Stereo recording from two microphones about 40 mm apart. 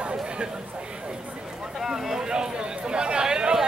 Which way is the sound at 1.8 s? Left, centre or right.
Centre.